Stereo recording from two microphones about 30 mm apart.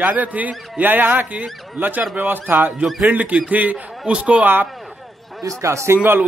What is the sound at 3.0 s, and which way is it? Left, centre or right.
Speech, right.